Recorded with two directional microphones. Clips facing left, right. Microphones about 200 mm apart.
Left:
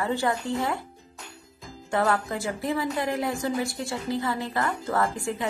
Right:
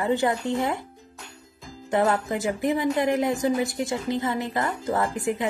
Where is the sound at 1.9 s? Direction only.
20° right (ahead or behind).